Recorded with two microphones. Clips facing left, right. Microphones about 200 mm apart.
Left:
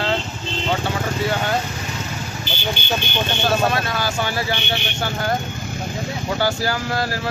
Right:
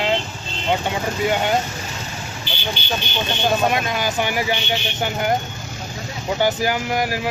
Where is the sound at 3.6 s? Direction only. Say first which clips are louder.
Right 1 dB; 15° right (ahead or behind).